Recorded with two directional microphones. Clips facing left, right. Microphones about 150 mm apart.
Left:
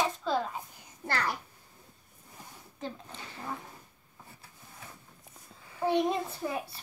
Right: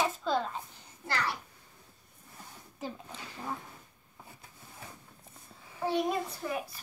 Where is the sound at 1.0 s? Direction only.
50° left (ahead or behind).